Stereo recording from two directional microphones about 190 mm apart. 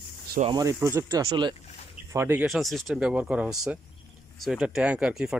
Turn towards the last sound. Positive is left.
turn(degrees=-5)  # may be behind; listen again after turning